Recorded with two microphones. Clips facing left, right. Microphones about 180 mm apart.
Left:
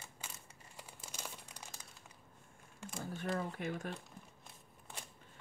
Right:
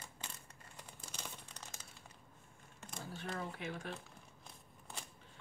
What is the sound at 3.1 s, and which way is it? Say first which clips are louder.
Speech: left 5 dB; 45° left (ahead or behind).